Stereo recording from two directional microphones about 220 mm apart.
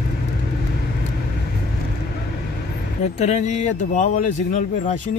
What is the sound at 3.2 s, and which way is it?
Speech, 30° left (ahead or behind).